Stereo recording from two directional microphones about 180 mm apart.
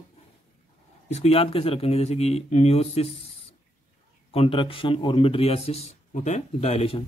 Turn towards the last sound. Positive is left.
turn(degrees=35)  # may be behind; listen again after turning